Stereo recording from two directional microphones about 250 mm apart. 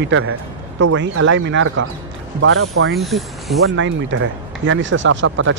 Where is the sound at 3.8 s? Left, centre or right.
Right.